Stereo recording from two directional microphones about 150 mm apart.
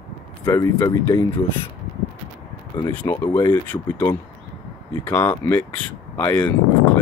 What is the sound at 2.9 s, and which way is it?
Speech, 10° left (ahead or behind).